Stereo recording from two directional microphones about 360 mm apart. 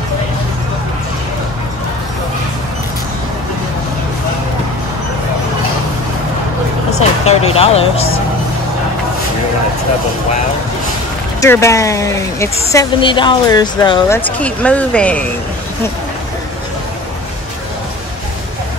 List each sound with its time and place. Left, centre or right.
7.2 s speech: centre
11.4 s speech: centre